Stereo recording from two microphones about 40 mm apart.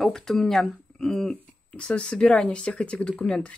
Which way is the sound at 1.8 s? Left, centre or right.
Left.